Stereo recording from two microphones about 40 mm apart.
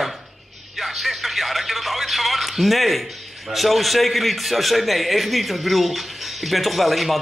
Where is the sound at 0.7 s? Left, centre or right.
Centre.